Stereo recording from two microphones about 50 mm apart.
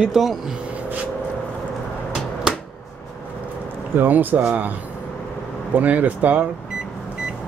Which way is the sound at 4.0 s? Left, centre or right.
Right.